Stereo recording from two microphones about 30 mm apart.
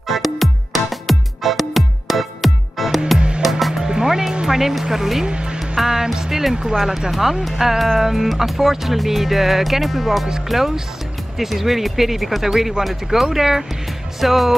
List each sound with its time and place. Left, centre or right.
0.1 s music: centre
3.2 s music: right
3.4 s music: centre
3.9 s music: right
4.5 s speech: centre
5.2 s speech: right
5.6 s music: centre
6.5 s speech: right
7.1 s speech: centre